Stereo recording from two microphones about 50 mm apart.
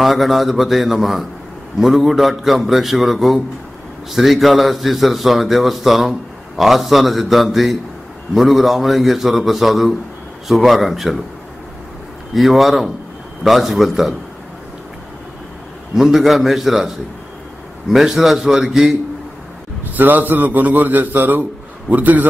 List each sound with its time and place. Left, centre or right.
0.0 s a man's voice: centre
12.4 s a man's voice: centre
15.9 s a man's voice: centre
19.9 s a man's voice: right